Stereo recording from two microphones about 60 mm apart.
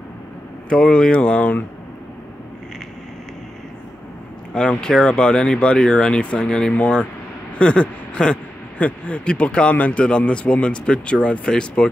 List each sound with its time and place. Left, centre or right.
0.7 s speech: centre
4.6 s speech: centre